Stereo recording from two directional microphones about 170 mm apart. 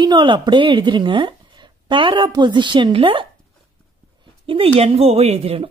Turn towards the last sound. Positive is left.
turn(degrees=-35)  # may be behind; listen again after turning